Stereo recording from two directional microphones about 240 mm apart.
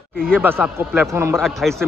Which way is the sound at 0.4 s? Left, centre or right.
Centre.